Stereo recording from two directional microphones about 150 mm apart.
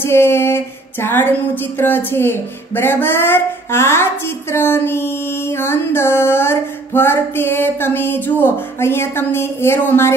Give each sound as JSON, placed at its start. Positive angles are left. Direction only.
{"t": 0.0, "sound": "speech", "side_deg": 15}